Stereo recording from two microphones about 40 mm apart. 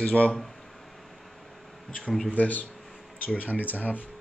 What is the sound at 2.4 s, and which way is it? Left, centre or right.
Speech, left.